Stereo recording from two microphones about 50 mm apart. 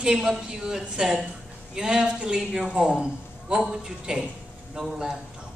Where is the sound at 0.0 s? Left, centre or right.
Centre.